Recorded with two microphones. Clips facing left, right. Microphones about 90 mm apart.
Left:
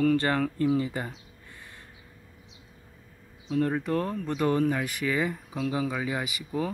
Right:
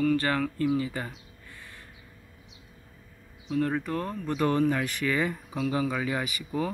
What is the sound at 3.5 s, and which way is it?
Speech, 30° left (ahead or behind).